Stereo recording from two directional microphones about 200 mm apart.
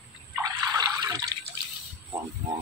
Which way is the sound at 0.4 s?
20° right (ahead or behind).